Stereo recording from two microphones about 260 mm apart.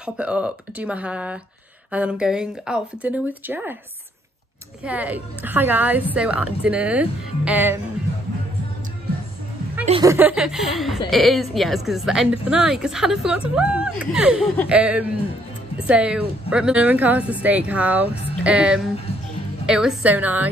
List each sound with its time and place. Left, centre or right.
0.0 s a woman's voice: centre
4.8 s a woman's voice: centre
9.8 s speech: centre
10.1 s a woman's voice: centre